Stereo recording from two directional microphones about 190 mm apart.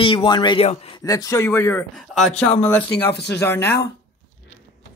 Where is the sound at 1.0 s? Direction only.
20° left (ahead or behind).